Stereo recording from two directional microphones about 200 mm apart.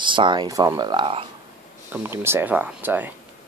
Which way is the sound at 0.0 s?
25° right (ahead or behind).